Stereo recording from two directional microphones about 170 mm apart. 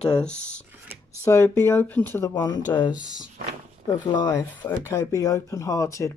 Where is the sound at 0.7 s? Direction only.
15° right (ahead or behind).